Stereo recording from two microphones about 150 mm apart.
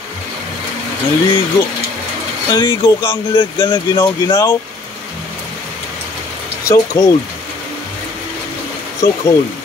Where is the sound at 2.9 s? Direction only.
15° left (ahead or behind).